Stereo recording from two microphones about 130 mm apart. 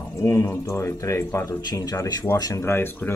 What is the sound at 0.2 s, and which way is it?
Speech, 20° left (ahead or behind).